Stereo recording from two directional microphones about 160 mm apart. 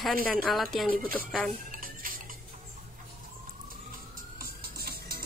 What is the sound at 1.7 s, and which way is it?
Dishes, 60° right (ahead or behind).